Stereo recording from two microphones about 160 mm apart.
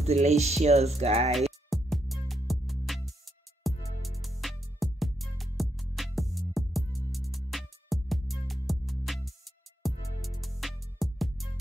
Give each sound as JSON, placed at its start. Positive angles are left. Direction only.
{"t": 0.0, "sound": "music", "side_deg": -45}
{"t": 1.7, "sound": "music", "side_deg": 0}